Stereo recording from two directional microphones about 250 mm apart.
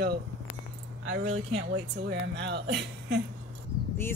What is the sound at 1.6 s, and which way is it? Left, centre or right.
A woman's voice, right.